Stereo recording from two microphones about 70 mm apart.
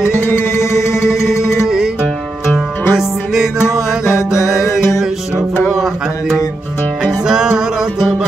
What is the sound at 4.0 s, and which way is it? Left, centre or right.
Music, left.